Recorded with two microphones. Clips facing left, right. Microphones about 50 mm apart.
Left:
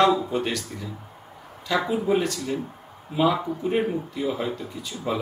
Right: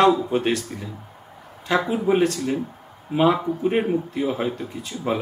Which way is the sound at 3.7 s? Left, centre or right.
Right.